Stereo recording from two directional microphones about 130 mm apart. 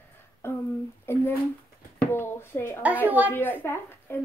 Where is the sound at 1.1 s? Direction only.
20° left (ahead or behind).